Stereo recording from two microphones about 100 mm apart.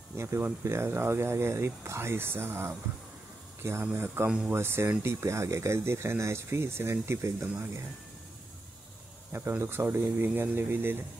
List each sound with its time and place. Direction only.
0.1 s speech: 25° right (ahead or behind)
3.8 s speech: 20° right (ahead or behind)
9.3 s speech: 25° right (ahead or behind)